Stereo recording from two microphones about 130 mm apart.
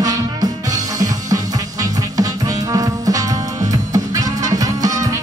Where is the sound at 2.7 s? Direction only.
25° right (ahead or behind).